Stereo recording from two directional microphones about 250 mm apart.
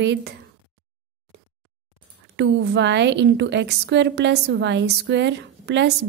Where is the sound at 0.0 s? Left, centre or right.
Right.